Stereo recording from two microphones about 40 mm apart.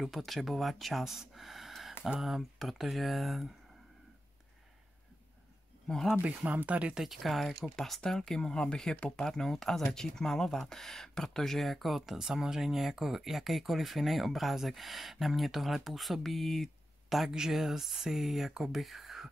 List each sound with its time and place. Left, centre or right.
0.1 s speech: centre
1.3 s a sound: centre
2.1 s speech: centre
6.2 s speech: right
7.2 s speech: centre
7.7 s speech: centre
8.4 s speech: left; by 12.2 s centre
12.2 s speech: centre
17.3 s speech: centre